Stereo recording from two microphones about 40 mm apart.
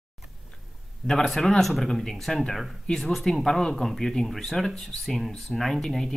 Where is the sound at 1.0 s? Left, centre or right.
Centre.